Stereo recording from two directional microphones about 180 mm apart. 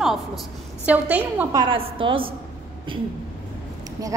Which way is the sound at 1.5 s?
25° right (ahead or behind).